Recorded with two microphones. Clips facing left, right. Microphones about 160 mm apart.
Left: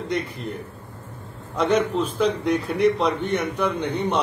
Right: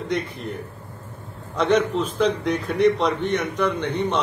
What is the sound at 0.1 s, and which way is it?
Speech, centre (ahead or behind).